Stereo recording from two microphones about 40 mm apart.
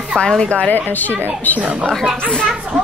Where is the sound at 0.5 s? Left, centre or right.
Left.